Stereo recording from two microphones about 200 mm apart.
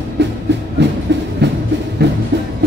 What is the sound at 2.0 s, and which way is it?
Music, 60° right (ahead or behind).